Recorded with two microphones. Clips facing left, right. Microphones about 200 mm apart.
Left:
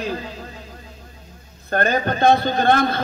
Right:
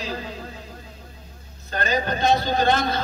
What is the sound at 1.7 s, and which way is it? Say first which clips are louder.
A man's voice: left 4 dB; 55° left (ahead or behind).